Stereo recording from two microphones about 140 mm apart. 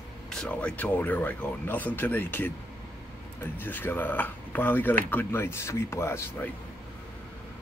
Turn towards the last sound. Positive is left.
turn(degrees=20)  # may be behind; listen again after turning